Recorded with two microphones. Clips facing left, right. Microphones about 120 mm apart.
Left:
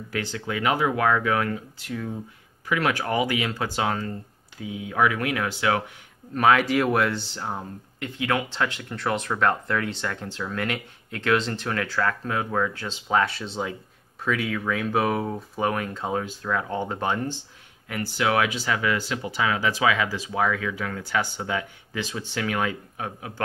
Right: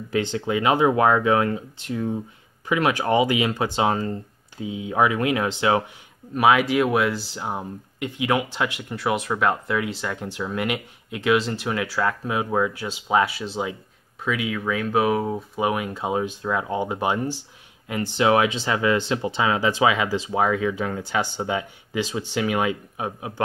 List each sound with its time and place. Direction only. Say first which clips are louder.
0.1 s speech: right 6 dB; 20° right (ahead or behind)
6.3 s speech: right 2 dB; 5° right (ahead or behind)
7.4 s speech: right 5 dB; 15° right (ahead or behind)